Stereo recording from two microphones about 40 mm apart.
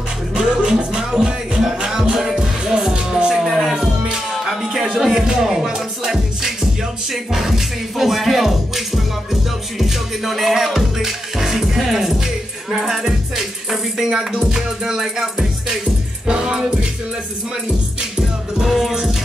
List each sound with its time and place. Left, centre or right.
0.4 s music: centre
3.4 s music: centre
3.7 s music: centre
18.7 s music: centre